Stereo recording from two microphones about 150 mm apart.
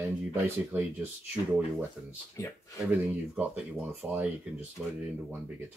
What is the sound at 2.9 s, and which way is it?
Speech, 10° right (ahead or behind).